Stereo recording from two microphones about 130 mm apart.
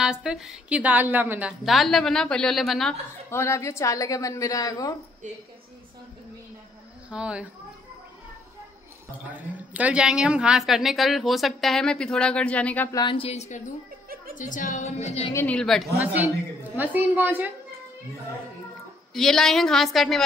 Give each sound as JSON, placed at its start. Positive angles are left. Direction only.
{"t": 0.0, "sound": "a woman's voice", "side_deg": -5}
{"t": 1.6, "sound": "a woman's voice", "side_deg": 0}
{"t": 3.3, "sound": "a woman's voice", "side_deg": 20}
{"t": 7.1, "sound": "a woman's voice", "side_deg": -10}
{"t": 9.8, "sound": "a woman's voice", "side_deg": -10}
{"t": 12.9, "sound": "a woman's voice", "side_deg": 40}
{"t": 14.3, "sound": "a woman's voice", "side_deg": 90}
{"t": 15.3, "sound": "a woman's voice", "side_deg": 10}
{"t": 16.0, "sound": "a woman's voice", "side_deg": -15}
{"t": 19.1, "sound": "a woman's voice", "side_deg": 5}